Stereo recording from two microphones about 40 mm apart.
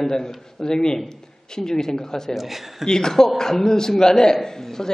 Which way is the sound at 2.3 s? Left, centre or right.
Centre.